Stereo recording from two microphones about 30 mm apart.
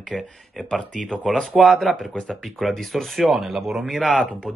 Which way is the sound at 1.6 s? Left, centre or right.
Centre.